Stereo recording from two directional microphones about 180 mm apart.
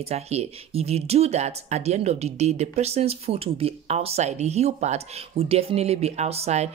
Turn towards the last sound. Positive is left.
turn(degrees=-35)  # may be behind; listen again after turning